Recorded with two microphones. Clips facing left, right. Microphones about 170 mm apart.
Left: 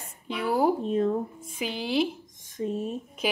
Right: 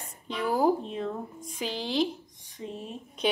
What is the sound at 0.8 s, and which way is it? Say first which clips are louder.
Speech: left 8 dB; 45° left (ahead or behind).